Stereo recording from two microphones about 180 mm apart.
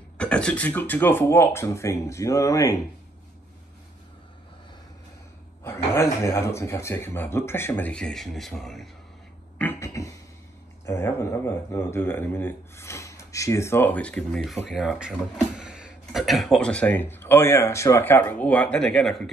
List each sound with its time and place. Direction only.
0.2 s speech: 5° left (ahead or behind)
5.6 s speech: 15° left (ahead or behind)
9.6 s a sound: 15° left (ahead or behind)
10.9 s speech: 15° left (ahead or behind)